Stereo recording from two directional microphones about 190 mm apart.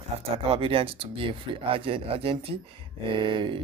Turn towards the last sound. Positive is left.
turn(degrees=-25)  # may be behind; listen again after turning